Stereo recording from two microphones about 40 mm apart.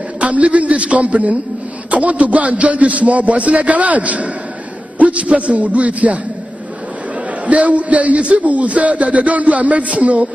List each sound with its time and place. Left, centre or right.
0.2 s a man's voice: right
7.4 s a man's voice: right